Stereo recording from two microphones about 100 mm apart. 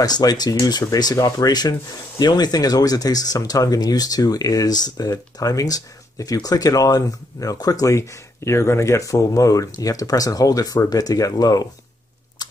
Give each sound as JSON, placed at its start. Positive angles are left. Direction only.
{"t": 0.0, "sound": "speech", "side_deg": 40}